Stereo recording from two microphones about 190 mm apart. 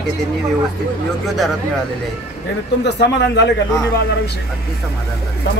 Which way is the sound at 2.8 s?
65° left (ahead or behind).